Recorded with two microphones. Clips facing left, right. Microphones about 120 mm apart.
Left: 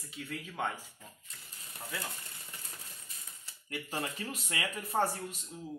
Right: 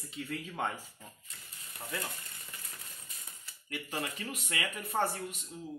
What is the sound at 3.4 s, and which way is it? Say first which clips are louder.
Speech: left 1 dB; 35° left (ahead or behind).